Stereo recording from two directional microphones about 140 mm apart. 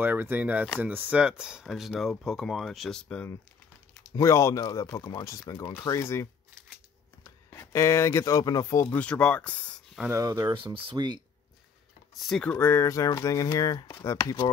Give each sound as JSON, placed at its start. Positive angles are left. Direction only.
{"t": 0.0, "sound": "speech", "side_deg": -15}
{"t": 4.1, "sound": "speech", "side_deg": 20}
{"t": 7.2, "sound": "speech", "side_deg": 20}
{"t": 8.8, "sound": "speech", "side_deg": 10}
{"t": 10.1, "sound": "speech", "side_deg": -25}
{"t": 12.3, "sound": "speech", "side_deg": 5}